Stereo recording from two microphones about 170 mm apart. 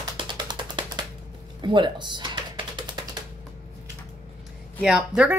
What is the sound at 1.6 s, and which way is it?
Typing, 25° right (ahead or behind).